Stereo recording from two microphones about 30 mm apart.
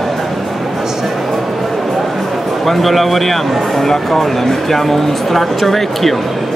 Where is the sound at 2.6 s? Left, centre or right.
Centre.